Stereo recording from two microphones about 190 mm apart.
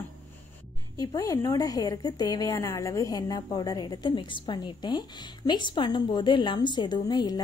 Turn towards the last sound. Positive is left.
turn(degrees=20)  # may be behind; listen again after turning